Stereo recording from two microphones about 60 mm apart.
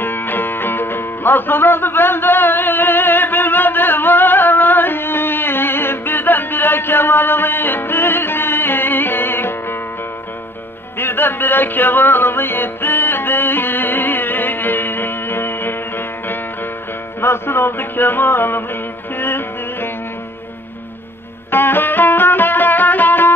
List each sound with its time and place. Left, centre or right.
0.0 s music: left
11.0 s music: left
21.5 s music: left